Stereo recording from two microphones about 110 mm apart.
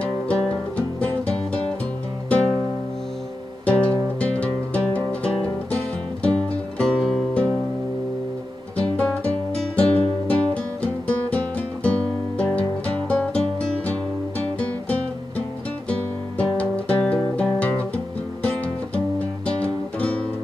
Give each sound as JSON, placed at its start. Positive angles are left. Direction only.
{"t": 0.0, "sound": "music", "side_deg": 10}
{"t": 3.6, "sound": "music", "side_deg": 10}
{"t": 8.7, "sound": "guitar", "side_deg": 10}
{"t": 10.2, "sound": "music", "side_deg": 10}
{"t": 16.5, "sound": "music", "side_deg": 15}
{"t": 19.4, "sound": "music", "side_deg": 10}